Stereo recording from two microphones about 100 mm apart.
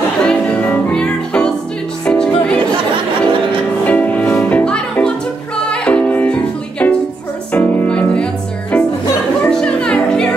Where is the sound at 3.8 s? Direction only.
15° left (ahead or behind).